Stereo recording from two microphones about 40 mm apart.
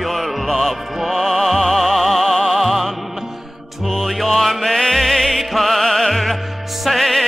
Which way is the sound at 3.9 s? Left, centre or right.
Centre.